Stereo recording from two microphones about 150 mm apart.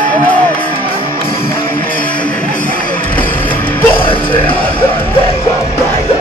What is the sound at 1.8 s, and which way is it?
Music, 10° left (ahead or behind).